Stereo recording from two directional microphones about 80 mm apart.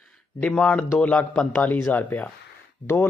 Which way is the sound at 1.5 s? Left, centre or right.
Left.